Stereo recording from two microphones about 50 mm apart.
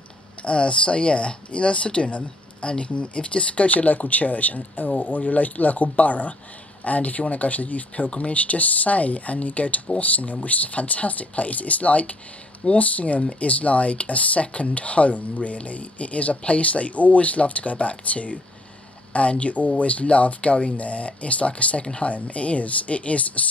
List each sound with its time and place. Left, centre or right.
0.4 s speech: left